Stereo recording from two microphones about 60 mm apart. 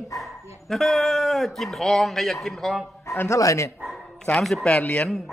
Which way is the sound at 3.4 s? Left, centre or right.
Left.